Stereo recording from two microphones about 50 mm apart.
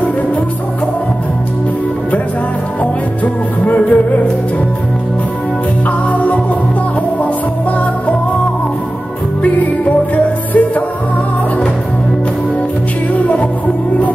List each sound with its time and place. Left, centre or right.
3.6 s music: left
5.9 s music: left
9.4 s music: left